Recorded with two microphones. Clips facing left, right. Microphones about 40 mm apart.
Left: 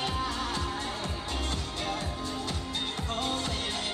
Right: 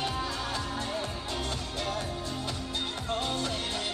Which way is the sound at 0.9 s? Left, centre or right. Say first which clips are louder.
Right 1 dB; centre.